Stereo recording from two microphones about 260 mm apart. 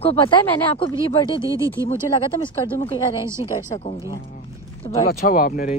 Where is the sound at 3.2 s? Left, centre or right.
Centre.